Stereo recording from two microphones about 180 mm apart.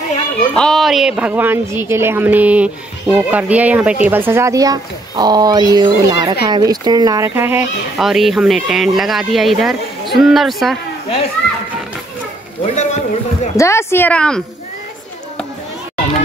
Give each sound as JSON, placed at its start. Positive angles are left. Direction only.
{"t": 0.6, "sound": "speech", "side_deg": 0}
{"t": 8.0, "sound": "speech", "side_deg": 0}
{"t": 12.7, "sound": "a sound", "side_deg": 40}
{"t": 13.6, "sound": "speech", "side_deg": 15}